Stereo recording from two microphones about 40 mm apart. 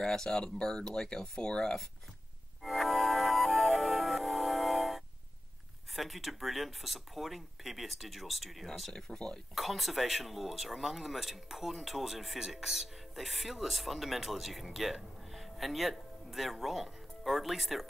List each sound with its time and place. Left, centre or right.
0.0 s speech: centre
2.6 s music: centre
5.9 s speech: centre
8.9 s speech: centre
9.6 s speech: centre